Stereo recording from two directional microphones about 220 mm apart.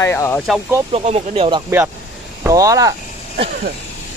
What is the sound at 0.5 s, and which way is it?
Speech, 10° right (ahead or behind).